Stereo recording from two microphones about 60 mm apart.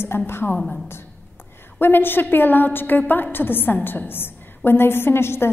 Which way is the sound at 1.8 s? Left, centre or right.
Left.